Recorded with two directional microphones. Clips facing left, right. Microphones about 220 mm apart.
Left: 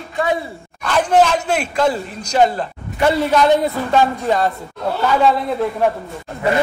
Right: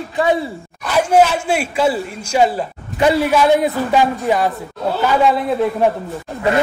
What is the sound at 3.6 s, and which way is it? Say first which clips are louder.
Speech: right 1 dB; 15° right (ahead or behind).